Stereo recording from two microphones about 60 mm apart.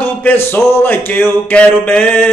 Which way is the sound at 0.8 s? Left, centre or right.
Left.